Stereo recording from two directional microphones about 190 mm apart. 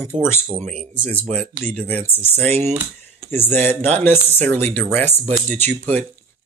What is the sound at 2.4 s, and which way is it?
Speech, 35° right (ahead or behind).